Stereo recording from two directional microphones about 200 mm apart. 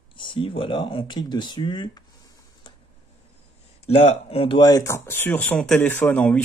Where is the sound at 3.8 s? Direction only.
30° left (ahead or behind).